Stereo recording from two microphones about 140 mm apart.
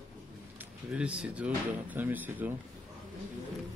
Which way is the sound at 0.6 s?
10° right (ahead or behind).